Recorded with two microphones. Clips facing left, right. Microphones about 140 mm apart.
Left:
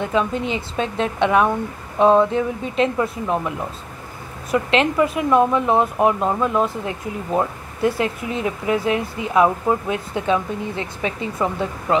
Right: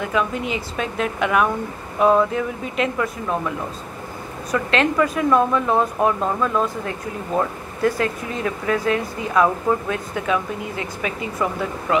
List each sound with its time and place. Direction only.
0.0 s speech: 30° left (ahead or behind)